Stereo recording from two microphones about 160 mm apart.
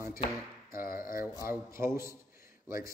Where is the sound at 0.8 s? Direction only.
60° left (ahead or behind).